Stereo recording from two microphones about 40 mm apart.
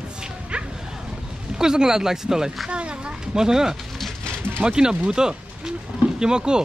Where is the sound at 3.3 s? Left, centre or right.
Centre.